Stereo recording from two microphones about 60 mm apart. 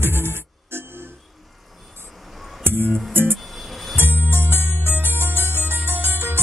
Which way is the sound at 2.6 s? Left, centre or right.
Right.